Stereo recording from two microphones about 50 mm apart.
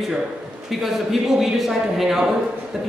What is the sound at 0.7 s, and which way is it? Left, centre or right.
A man's voice, centre.